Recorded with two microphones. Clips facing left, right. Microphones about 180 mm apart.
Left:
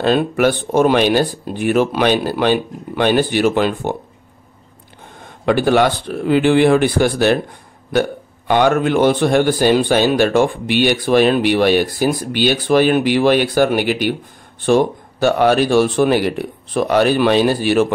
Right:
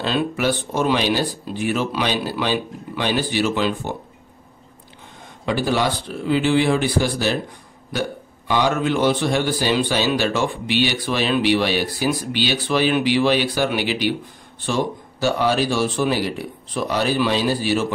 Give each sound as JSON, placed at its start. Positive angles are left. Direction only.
{"t": 0.0, "sound": "speech", "side_deg": 50}
{"t": 5.4, "sound": "a man's voice", "side_deg": 60}